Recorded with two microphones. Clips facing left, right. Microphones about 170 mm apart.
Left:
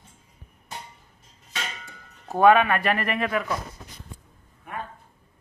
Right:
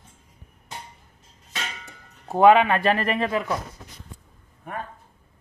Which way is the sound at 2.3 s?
20° right (ahead or behind).